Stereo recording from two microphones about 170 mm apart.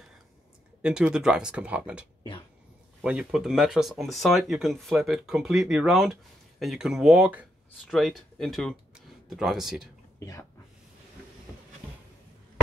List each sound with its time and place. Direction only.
0.8 s speech: 5° right (ahead or behind)
10.1 s speech: 15° left (ahead or behind)